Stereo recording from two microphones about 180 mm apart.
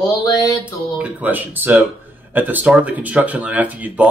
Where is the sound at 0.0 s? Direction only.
20° left (ahead or behind).